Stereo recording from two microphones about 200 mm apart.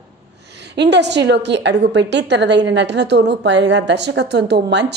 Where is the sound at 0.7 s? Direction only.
60° right (ahead or behind).